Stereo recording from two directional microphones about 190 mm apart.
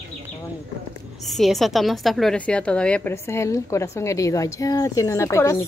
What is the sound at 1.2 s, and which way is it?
A woman's voice, centre (ahead or behind).